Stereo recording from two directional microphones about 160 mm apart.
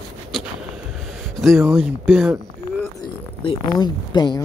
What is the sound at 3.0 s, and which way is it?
Speech, 25° left (ahead or behind).